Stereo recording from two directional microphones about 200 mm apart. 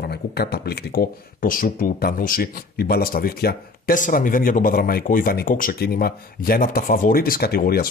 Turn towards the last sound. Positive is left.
turn(degrees=50)  # may be behind; listen again after turning